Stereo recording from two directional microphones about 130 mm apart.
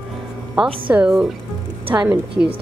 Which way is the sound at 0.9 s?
5° right (ahead or behind).